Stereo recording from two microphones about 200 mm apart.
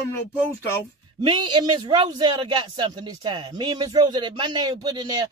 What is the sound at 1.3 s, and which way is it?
Speech, 25° right (ahead or behind).